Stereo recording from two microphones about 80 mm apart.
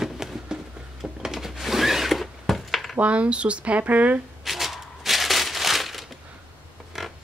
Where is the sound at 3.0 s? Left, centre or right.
Centre.